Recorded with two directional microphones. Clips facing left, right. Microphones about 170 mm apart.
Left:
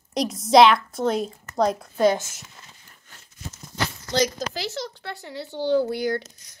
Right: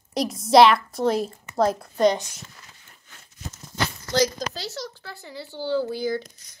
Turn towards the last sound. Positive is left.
turn(degrees=20)  # may be behind; listen again after turning